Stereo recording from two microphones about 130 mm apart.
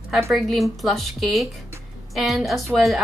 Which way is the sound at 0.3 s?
Centre (ahead or behind).